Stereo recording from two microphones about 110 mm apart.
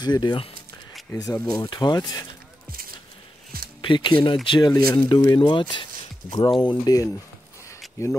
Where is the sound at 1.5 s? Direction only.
40° left (ahead or behind).